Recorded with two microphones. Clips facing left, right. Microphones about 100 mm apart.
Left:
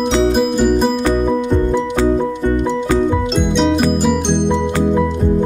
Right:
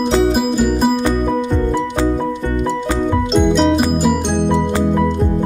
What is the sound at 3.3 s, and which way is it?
Music, centre (ahead or behind).